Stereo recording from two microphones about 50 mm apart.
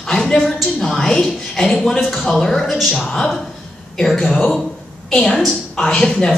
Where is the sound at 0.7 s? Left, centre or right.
Centre.